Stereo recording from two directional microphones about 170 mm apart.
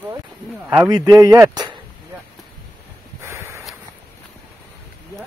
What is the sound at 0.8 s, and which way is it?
Speech, 20° right (ahead or behind).